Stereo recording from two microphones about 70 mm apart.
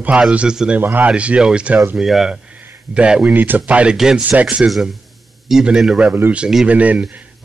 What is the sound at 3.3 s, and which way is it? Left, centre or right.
Speech, right.